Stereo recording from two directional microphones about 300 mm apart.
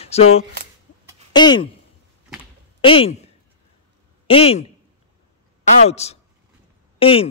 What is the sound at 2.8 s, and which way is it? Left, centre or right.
A woman's voice, centre.